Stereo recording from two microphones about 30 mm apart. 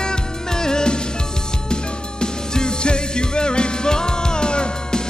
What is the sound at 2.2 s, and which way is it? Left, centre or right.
Music, left.